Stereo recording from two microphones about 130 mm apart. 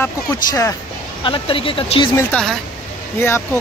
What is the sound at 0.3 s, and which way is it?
Speech, 25° left (ahead or behind).